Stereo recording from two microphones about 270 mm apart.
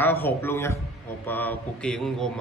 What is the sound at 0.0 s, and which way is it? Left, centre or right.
Speech, centre.